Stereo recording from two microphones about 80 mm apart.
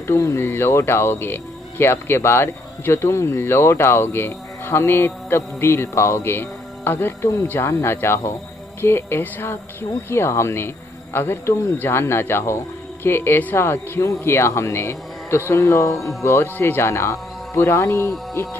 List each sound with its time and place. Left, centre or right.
0.0 s speech: left